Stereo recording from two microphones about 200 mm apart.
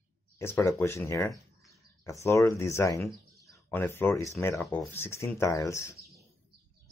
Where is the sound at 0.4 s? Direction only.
15° left (ahead or behind).